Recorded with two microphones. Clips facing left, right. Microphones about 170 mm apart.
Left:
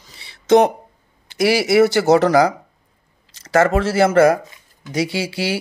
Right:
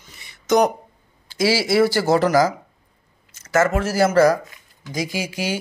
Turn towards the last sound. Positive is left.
turn(degrees=30)  # may be behind; listen again after turning